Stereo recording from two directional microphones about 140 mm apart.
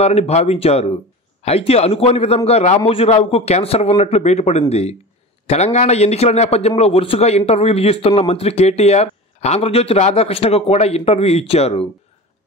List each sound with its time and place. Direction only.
0.0 s speech: 50° left (ahead or behind)